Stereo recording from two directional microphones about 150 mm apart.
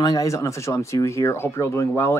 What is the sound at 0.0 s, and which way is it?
Speech, 25° left (ahead or behind).